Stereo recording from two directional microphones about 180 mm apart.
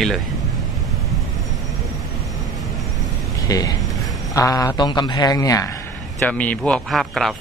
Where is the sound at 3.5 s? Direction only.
20° left (ahead or behind).